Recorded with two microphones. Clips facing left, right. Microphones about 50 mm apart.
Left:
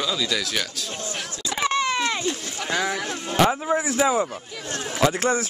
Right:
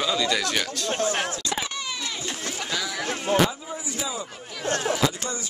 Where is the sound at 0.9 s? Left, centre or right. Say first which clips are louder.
Right 7 dB; right.